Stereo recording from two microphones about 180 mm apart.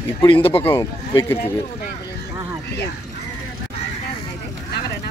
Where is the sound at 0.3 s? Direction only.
30° left (ahead or behind).